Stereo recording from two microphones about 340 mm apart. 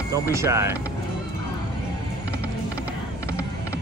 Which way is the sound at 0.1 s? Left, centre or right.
Centre.